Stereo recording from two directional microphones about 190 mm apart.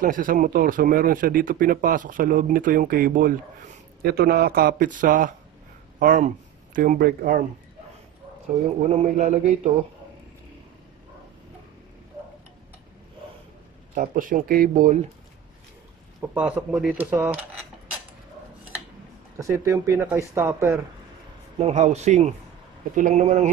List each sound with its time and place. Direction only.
0.0 s speech: 45° right (ahead or behind)
9.1 s a man's voice: 40° right (ahead or behind)
13.9 s speech: 45° right (ahead or behind)
16.2 s speech: 10° right (ahead or behind)
19.3 s speech: 15° right (ahead or behind)
21.5 s a man's voice: 35° right (ahead or behind)